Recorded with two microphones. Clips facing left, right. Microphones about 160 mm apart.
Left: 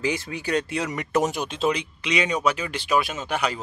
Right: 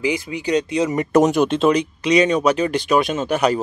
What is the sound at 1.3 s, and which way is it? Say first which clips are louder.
A man's voice: right 9 dB; 50° right (ahead or behind).